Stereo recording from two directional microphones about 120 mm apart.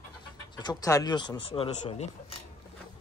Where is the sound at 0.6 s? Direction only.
35° left (ahead or behind); by 2.0 s 50° left (ahead or behind).